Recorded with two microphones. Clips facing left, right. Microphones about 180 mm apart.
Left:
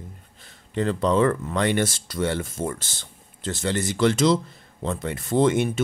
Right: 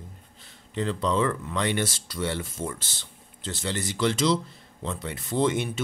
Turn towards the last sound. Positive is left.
turn(degrees=50)  # may be behind; listen again after turning